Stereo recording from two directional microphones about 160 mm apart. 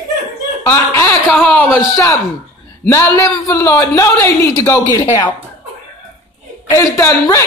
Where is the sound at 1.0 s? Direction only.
10° left (ahead or behind).